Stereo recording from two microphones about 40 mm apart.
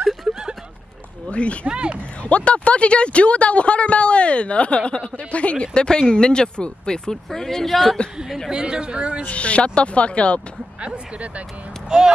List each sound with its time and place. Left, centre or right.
0.3 s a sound: centre
1.3 s speech: left
1.7 s a woman's voice: right
2.2 s speech: left
7.1 s speech: centre
8.5 s a woman's voice: right
9.3 s speech: left
11.9 s speech: centre